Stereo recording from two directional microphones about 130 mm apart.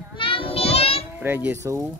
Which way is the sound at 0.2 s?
45° left (ahead or behind).